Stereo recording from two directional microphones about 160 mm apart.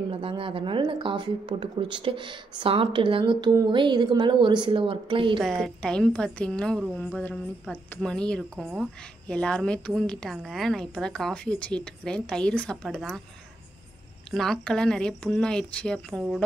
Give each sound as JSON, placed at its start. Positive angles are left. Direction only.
{"t": 0.1, "sound": "speech", "side_deg": -35}
{"t": 5.4, "sound": "speech", "side_deg": 0}
{"t": 14.3, "sound": "speech", "side_deg": 0}